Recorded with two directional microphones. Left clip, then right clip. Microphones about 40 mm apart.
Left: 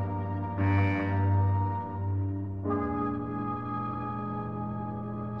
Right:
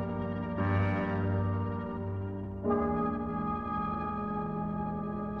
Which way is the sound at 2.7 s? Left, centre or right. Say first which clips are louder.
Even; centre.